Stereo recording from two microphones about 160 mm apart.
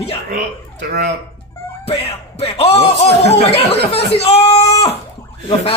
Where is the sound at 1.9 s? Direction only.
40° left (ahead or behind).